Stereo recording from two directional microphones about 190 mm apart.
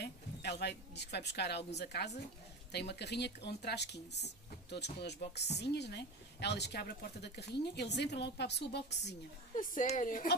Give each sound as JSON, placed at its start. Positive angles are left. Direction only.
{"t": 0.0, "sound": "speech", "side_deg": 60}
{"t": 9.6, "sound": "a woman's voice", "side_deg": 45}